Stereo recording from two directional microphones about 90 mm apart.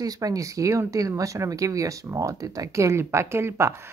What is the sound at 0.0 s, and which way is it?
Speech, 40° right (ahead or behind).